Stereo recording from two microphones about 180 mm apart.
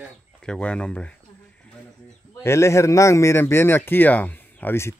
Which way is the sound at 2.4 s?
15° left (ahead or behind).